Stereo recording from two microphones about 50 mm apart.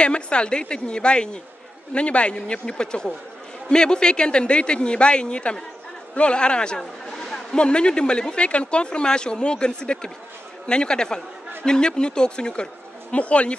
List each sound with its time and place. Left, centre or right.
0.0 s a man's voice: left
7.5 s speech: centre